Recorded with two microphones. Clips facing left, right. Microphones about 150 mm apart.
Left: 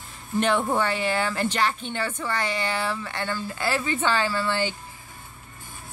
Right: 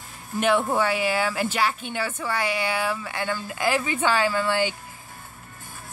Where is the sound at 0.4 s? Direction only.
5° right (ahead or behind).